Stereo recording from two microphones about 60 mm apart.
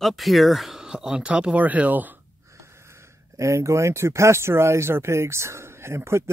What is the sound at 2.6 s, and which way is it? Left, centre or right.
Speech, right.